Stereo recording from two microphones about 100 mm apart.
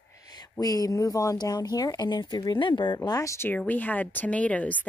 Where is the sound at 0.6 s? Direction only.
40° left (ahead or behind).